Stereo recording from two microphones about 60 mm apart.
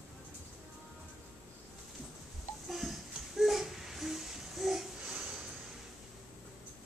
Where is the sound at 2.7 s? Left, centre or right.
Centre.